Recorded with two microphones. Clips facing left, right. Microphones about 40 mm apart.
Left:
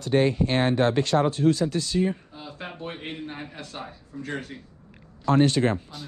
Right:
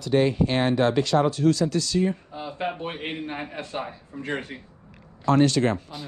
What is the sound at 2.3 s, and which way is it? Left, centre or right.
A man's voice, centre.